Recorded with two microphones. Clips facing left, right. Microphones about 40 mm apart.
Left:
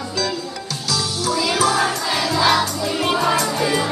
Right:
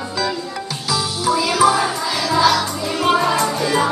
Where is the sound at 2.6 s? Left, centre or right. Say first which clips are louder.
Even; right.